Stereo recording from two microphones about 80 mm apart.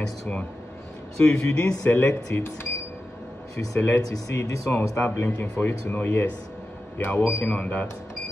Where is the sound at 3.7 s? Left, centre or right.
Left.